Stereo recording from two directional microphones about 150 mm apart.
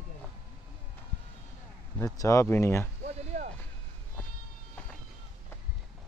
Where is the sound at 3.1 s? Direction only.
50° right (ahead or behind).